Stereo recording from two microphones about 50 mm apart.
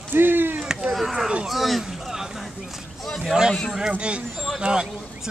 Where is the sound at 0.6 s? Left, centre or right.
Centre.